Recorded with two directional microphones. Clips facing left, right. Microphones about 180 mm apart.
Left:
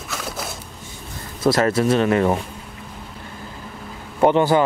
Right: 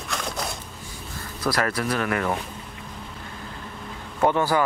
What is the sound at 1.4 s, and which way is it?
A man's voice, 25° left (ahead or behind).